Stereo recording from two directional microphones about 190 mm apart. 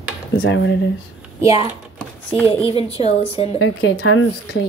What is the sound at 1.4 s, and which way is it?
Speech, 20° right (ahead or behind).